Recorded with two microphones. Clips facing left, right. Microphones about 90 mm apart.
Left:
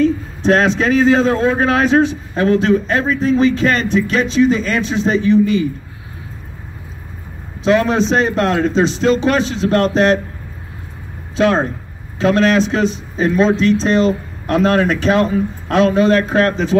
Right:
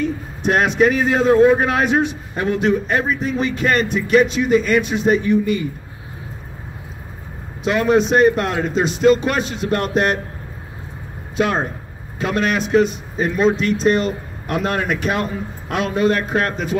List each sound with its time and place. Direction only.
0.0 s a man's voice: 15° right (ahead or behind)
8.1 s speech: 10° right (ahead or behind)
11.3 s speech: 10° right (ahead or behind)